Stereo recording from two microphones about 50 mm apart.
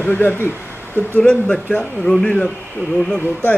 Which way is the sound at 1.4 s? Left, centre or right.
Left.